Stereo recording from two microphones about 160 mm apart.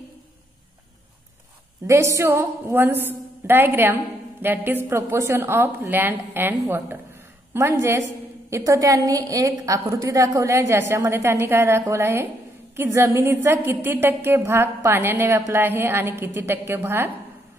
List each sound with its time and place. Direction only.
1.9 s a woman's voice: 15° right (ahead or behind)